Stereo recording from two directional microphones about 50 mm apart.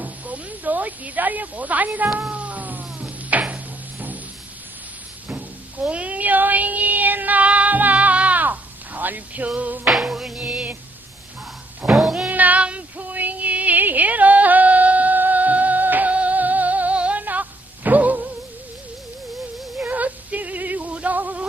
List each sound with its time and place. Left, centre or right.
0.0 s snake: right
2.2 s cat: right
5.3 s a sound: right
10.0 s music: centre
10.4 s a sound: right
11.9 s cat: centre
12.3 s child singing: right
12.6 s music: right
19.8 s a sound: right